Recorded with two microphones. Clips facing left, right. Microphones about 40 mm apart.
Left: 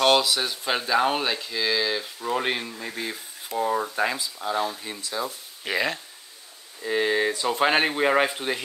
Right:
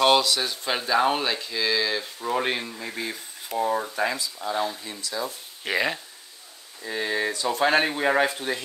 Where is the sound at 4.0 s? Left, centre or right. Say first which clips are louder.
Left 1 dB; left.